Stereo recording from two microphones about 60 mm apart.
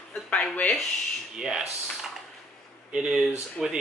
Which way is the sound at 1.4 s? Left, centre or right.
Centre.